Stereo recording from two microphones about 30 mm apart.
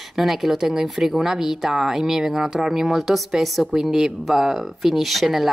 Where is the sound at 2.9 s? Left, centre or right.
Centre.